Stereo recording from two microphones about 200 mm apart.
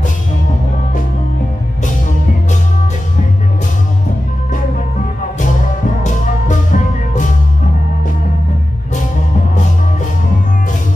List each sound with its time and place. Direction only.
6.0 s music: 40° left (ahead or behind)